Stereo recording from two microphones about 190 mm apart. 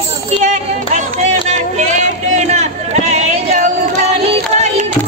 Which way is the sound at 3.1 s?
35° right (ahead or behind).